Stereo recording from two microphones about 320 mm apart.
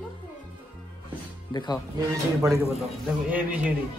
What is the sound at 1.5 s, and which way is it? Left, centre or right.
Speech, centre.